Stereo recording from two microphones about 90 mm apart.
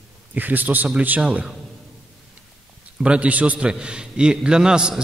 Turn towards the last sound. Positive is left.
turn(degrees=-10)  # may be behind; listen again after turning